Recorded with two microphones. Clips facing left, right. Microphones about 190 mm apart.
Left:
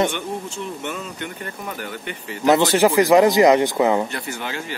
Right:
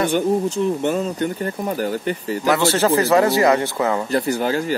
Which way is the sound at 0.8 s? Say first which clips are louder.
Right 9 dB; 35° right (ahead or behind).